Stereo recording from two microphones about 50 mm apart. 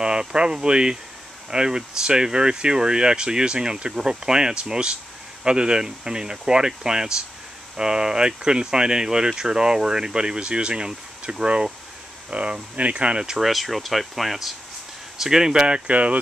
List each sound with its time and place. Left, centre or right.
0.0 s speech: centre
13.4 s speech: centre; by 16.2 s right